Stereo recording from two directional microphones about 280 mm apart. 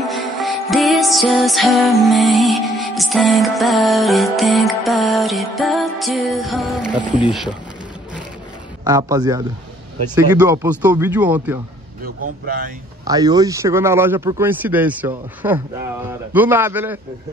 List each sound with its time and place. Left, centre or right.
0.0 s music: centre
8.8 s speech: centre
10.1 s music: centre
12.0 s speech: right
13.0 s speech: centre